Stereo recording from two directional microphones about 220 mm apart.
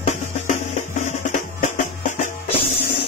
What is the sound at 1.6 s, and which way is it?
Music, 35° left (ahead or behind).